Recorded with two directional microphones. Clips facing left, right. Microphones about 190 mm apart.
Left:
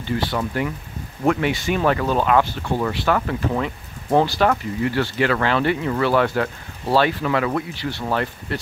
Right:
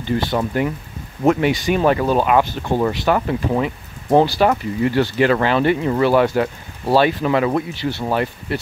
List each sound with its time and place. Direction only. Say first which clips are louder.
0.3 s speech: right 4 dB; 25° right (ahead or behind)